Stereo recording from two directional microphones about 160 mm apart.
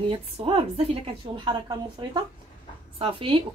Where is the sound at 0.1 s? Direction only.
35° right (ahead or behind).